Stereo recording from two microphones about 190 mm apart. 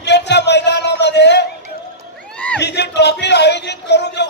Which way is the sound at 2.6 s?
65° left (ahead or behind).